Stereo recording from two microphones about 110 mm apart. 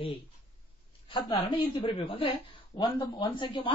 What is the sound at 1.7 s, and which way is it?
Speech, 50° left (ahead or behind).